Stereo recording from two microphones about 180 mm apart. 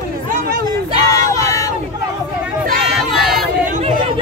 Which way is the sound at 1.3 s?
20° left (ahead or behind).